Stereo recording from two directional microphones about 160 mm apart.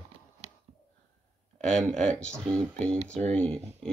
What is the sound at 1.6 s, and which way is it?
Speech, 5° left (ahead or behind).